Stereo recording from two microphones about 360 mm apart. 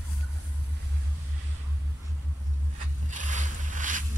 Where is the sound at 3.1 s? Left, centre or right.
Right.